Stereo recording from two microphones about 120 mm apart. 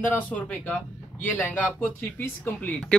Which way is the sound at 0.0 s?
15° left (ahead or behind).